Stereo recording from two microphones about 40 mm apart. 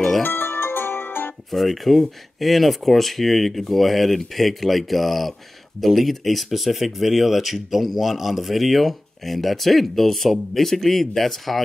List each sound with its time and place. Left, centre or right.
0.2 s music: left
1.5 s speech: centre